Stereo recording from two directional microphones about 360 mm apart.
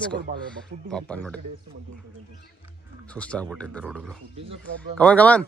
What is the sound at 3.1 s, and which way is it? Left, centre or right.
Speech, centre.